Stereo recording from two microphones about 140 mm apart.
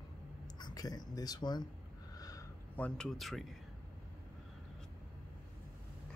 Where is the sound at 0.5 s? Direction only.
30° left (ahead or behind).